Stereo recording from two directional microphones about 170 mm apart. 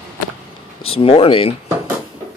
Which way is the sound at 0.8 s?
35° left (ahead or behind).